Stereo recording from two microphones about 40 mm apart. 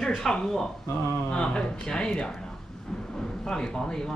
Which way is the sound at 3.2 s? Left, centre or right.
Centre.